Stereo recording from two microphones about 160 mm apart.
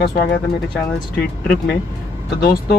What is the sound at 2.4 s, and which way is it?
Speech, 70° left (ahead or behind).